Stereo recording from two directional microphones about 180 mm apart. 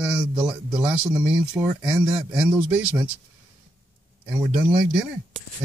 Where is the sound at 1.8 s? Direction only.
5° right (ahead or behind).